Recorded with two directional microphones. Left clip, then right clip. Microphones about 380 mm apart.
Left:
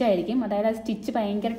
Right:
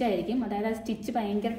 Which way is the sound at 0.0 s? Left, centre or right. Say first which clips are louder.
Left 5 dB; left.